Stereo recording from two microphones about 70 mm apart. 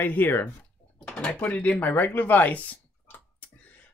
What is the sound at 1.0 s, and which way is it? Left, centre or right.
Drawer open or close, centre.